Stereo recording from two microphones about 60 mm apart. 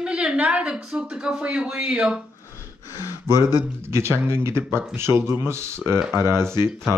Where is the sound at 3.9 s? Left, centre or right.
Right.